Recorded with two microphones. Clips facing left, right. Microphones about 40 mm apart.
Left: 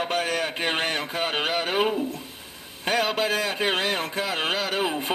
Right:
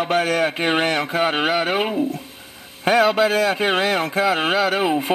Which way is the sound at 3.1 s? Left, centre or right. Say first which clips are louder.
Right 7 dB; centre.